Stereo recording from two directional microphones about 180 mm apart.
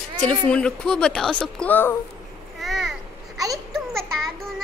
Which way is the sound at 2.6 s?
Centre (ahead or behind).